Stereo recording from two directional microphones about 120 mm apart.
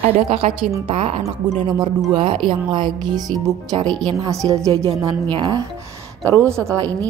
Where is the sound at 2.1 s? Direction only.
45° right (ahead or behind); by 5.1 s 30° right (ahead or behind).